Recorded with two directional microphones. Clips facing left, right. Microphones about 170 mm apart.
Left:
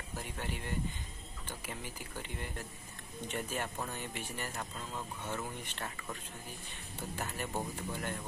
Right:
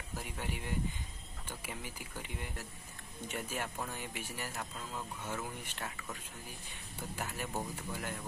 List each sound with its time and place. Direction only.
0.1 s speech: 10° right (ahead or behind)
1.7 s speech: 10° right (ahead or behind)